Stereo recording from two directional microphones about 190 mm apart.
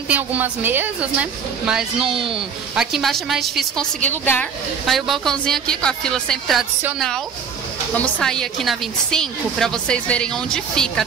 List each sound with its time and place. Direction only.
0.1 s a woman's voice: 10° right (ahead or behind)
2.0 s speech: 25° right (ahead or behind)
2.3 s a woman's voice: 5° right (ahead or behind)
8.0 s a woman's voice: 5° left (ahead or behind)